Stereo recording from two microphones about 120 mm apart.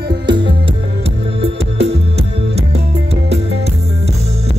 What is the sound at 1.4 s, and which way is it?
Music, 60° right (ahead or behind).